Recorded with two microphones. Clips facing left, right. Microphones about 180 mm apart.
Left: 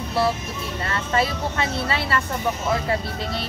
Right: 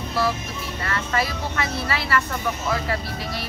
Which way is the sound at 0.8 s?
25° left (ahead or behind).